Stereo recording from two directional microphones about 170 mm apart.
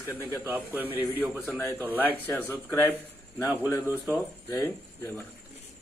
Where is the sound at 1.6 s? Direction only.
15° left (ahead or behind).